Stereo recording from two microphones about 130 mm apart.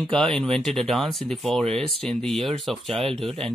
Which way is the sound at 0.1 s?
5° left (ahead or behind).